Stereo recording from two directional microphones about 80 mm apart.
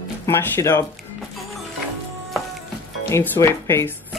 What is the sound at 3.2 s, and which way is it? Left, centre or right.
Speech, left.